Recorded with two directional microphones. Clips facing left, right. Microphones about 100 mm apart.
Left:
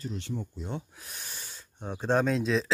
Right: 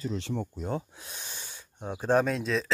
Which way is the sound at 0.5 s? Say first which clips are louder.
Right 4 dB; 45° right (ahead or behind).